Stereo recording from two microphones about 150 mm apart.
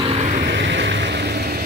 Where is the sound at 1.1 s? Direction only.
90° right.